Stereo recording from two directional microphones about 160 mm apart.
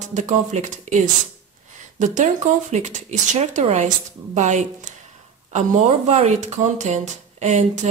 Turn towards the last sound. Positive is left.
turn(degrees=-45)  # may be behind; listen again after turning